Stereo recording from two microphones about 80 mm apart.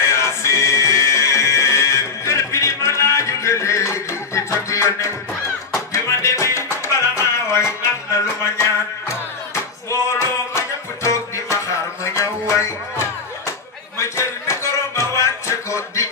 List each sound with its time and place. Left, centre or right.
0.0 s music: left
9.8 s music: left